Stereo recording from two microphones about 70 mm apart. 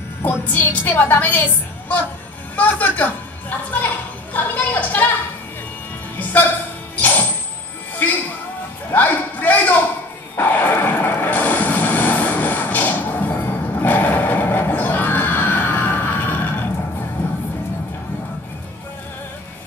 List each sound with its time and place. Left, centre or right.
0.2 s a woman's voice: left
7.0 s music: left
8.9 s a woman's voice: left
10.3 s vehicle: left